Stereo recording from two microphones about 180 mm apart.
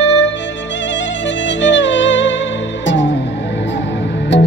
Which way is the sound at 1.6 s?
90° left.